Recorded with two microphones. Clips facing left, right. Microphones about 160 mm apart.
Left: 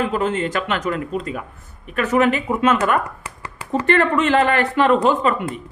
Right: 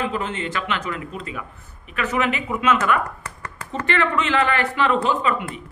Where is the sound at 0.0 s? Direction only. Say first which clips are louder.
Left 5 dB; 45° left (ahead or behind).